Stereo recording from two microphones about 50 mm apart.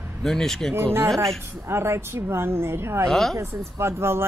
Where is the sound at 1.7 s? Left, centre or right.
Right.